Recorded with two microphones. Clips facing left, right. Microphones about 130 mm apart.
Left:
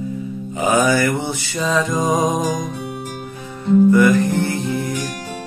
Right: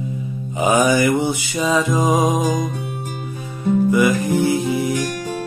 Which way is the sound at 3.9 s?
10° right (ahead or behind).